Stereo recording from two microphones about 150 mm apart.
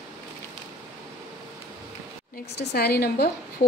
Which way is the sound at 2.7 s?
90° left.